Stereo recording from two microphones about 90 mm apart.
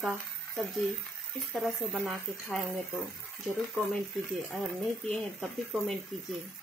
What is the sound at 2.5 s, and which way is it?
Speech, 15° left (ahead or behind).